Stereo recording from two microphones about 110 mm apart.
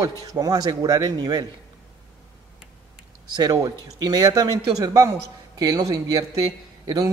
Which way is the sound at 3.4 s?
35° right (ahead or behind).